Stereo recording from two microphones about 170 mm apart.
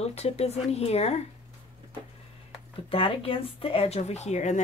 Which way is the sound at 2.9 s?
35° left (ahead or behind).